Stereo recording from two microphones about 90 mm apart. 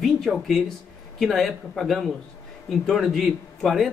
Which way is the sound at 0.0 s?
Centre (ahead or behind).